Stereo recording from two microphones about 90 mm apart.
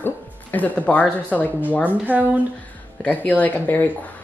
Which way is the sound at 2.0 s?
20° right (ahead or behind).